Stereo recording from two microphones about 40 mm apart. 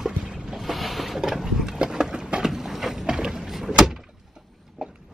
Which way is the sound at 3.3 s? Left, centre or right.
Centre.